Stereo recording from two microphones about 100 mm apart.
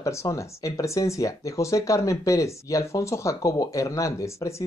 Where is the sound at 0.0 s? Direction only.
30° left (ahead or behind).